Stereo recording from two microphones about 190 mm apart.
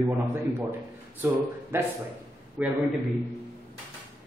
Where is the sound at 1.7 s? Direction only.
15° right (ahead or behind).